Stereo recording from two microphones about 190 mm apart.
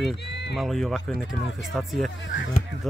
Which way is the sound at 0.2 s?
65° left (ahead or behind).